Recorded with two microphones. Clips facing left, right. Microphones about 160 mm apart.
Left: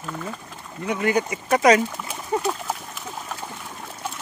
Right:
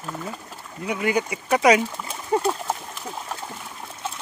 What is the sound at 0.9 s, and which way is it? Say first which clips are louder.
Speech: left 1 dB; 10° right (ahead or behind).